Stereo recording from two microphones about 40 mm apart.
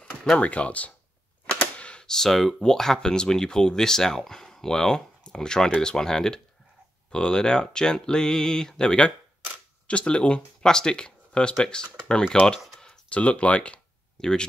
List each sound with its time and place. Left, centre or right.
0.4 s speech: left
1.8 s computer keyboard: left
2.0 s speech: centre
12.5 s a sound: centre
13.1 s speech: left
14.2 s speech: centre